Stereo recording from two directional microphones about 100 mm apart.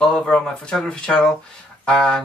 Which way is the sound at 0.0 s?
5° left (ahead or behind).